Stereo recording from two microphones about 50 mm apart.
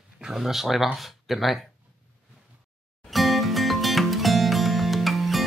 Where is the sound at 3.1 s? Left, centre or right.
Centre.